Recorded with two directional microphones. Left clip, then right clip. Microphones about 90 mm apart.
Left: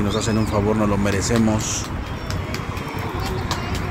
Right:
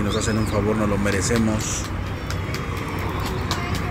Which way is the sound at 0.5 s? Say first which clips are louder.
Left 2 dB; 35° left (ahead or behind).